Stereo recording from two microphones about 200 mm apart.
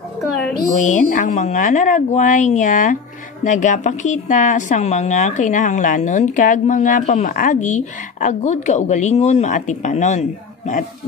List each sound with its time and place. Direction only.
0.7 s a woman's voice: 40° left (ahead or behind)